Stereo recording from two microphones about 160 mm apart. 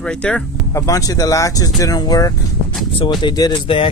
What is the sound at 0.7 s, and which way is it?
Speech, 20° left (ahead or behind).